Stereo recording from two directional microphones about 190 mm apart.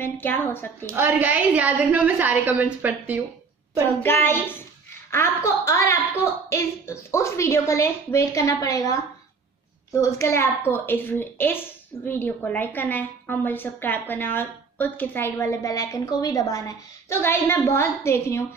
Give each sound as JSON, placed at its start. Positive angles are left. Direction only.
{"t": 0.0, "sound": "a child's voice", "side_deg": 10}
{"t": 0.8, "sound": "a woman's voice", "side_deg": -10}
{"t": 4.0, "sound": "a child's voice", "side_deg": 10}